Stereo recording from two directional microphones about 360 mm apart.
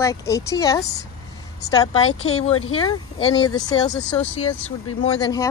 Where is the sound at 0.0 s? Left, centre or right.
Centre.